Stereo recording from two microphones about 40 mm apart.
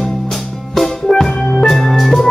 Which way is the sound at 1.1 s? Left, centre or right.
Centre.